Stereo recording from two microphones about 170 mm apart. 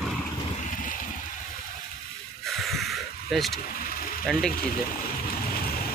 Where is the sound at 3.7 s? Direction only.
60° left (ahead or behind).